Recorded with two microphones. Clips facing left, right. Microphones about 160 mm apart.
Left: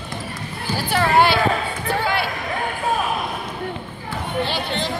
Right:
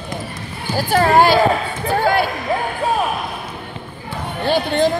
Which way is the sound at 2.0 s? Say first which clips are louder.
Right 7 dB; 45° right (ahead or behind).